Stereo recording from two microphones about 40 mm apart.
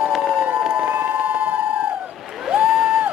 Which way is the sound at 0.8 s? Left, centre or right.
Right.